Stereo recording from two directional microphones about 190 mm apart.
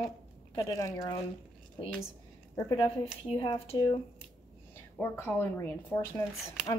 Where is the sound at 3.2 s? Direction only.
30° left (ahead or behind).